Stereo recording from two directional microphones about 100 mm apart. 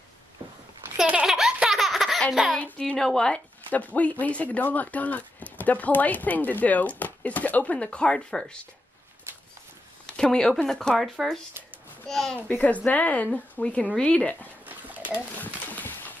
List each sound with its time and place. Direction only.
0.9 s baby laughter: 10° right (ahead or behind)
2.3 s speech: 5° right (ahead or behind)
2.6 s speech: 10° left (ahead or behind)
10.0 s speech: 10° left (ahead or behind)
12.4 s speech: 15° left (ahead or behind)
15.3 s a sound: 15° left (ahead or behind)